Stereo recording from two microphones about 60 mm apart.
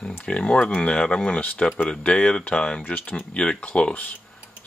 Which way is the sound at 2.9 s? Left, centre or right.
Left.